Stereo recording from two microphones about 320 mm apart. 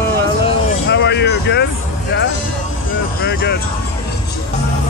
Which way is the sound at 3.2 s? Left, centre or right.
Left.